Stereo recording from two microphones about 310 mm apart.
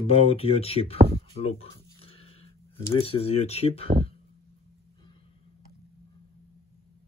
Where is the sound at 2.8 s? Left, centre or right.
Centre.